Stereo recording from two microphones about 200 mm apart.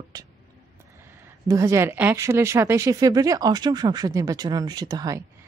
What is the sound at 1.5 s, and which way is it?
Speech, 15° right (ahead or behind).